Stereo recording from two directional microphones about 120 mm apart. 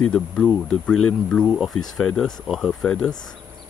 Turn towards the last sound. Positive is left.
turn(degrees=5)  # may be behind; listen again after turning